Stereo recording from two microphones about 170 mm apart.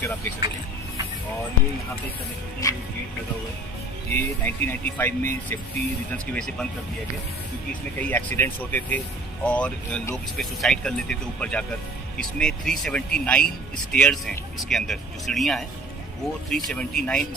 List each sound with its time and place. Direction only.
2.6 s speech: 20° left (ahead or behind)
4.1 s speech: 10° left (ahead or behind)
8.0 s speech: 10° left (ahead or behind)